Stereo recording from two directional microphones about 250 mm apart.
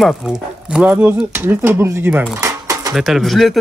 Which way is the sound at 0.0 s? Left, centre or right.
Centre.